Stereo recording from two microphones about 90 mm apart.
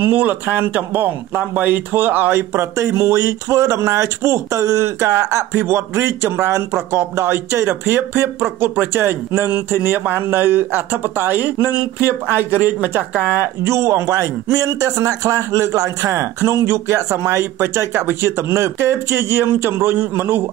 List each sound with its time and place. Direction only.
0.0 s speech: 20° right (ahead or behind)